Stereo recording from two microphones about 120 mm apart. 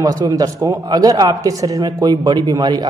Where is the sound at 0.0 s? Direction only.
30° right (ahead or behind).